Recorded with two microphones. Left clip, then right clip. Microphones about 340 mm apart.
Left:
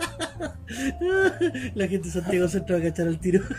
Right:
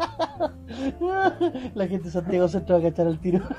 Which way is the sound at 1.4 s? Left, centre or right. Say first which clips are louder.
Even; right.